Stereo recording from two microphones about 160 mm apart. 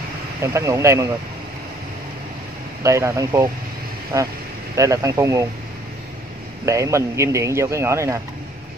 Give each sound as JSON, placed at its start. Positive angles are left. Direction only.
{"t": 0.4, "sound": "speech", "side_deg": -20}
{"t": 2.8, "sound": "speech", "side_deg": -20}
{"t": 6.6, "sound": "speech", "side_deg": -20}